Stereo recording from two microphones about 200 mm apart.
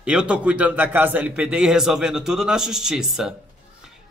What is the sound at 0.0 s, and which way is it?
A man's voice, 5° right (ahead or behind).